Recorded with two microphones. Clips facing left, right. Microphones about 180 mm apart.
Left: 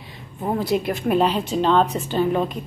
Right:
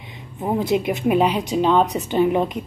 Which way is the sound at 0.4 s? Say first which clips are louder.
Right 2 dB; 15° right (ahead or behind).